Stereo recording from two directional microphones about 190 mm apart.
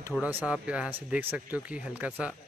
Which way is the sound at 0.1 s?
5° left (ahead or behind).